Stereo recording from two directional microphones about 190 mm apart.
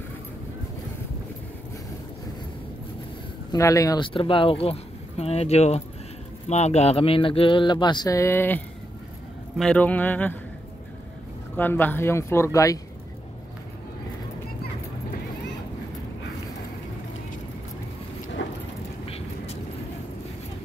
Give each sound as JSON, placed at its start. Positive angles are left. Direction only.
{"t": 3.5, "sound": "speech", "side_deg": 15}
{"t": 11.5, "sound": "speech", "side_deg": 10}
{"t": 19.0, "sound": "vehicle", "side_deg": 30}